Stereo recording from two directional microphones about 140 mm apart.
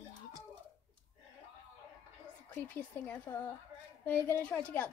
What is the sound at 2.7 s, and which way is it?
A woman's voice, 15° left (ahead or behind).